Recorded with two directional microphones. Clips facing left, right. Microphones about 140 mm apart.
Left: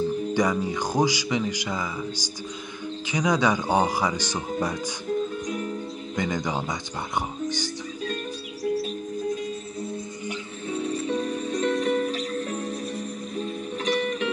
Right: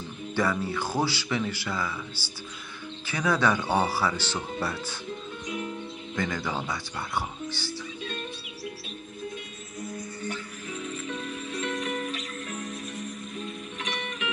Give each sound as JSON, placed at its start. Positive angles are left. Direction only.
{"t": 0.3, "sound": "speech", "side_deg": 15}
{"t": 6.1, "sound": "speech", "side_deg": 20}
{"t": 9.3, "sound": "music", "side_deg": 30}